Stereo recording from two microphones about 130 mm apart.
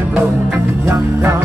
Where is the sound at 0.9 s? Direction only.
20° right (ahead or behind).